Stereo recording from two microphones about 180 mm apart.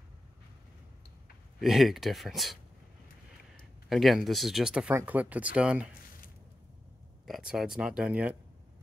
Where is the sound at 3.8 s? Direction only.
Centre (ahead or behind).